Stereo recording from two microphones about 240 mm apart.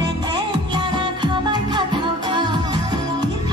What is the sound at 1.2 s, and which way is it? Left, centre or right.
Music, centre.